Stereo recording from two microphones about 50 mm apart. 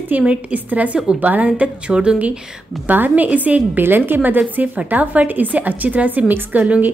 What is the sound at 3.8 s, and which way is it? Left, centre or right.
A woman's voice, right.